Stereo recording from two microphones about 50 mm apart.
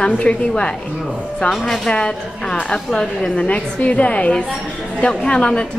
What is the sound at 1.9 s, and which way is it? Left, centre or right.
A woman's voice, left.